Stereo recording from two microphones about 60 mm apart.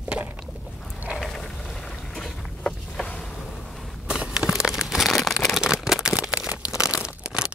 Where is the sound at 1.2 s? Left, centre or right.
Centre.